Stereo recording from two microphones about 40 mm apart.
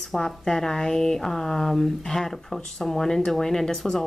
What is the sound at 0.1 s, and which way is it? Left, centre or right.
A woman's voice, centre.